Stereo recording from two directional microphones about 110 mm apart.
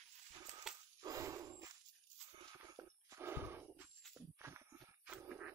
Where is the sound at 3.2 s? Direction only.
20° right (ahead or behind).